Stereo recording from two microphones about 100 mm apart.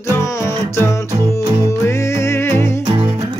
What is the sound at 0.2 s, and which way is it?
Music, 30° left (ahead or behind).